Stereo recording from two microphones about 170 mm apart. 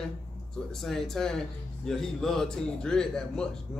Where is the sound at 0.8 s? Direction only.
Centre (ahead or behind).